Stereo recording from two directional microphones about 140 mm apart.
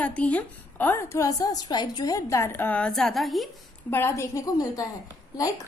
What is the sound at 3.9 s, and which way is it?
Speech, 20° left (ahead or behind).